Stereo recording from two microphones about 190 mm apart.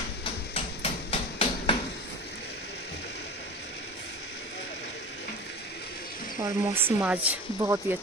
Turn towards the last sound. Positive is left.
turn(degrees=-15)  # may be behind; listen again after turning